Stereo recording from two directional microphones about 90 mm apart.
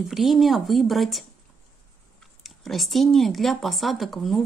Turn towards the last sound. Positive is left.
turn(degrees=0)  # may be behind; listen again after turning